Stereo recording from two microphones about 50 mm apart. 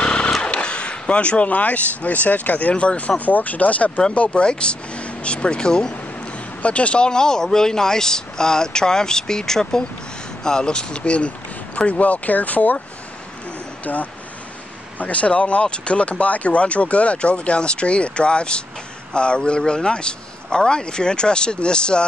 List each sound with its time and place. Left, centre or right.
0.0 s a sound: left
0.4 s speech: left
4.3 s speech: centre
13.9 s speech: left